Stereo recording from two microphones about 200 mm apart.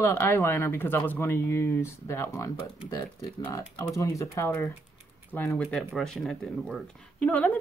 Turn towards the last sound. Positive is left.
turn(degrees=10)  # may be behind; listen again after turning